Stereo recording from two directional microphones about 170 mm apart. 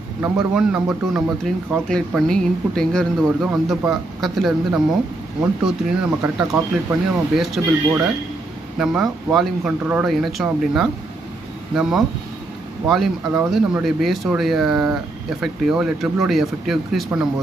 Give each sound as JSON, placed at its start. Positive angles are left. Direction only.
{"t": 0.2, "sound": "speech", "side_deg": -5}
{"t": 6.3, "sound": "speech", "side_deg": -20}
{"t": 7.6, "sound": "speech", "side_deg": -5}
{"t": 8.7, "sound": "speech", "side_deg": -5}